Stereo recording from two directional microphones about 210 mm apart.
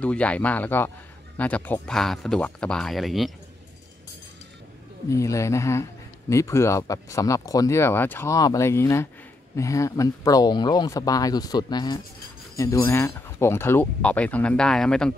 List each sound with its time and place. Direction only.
0.0 s a man's voice: 5° left (ahead or behind)
5.1 s speech: 15° left (ahead or behind)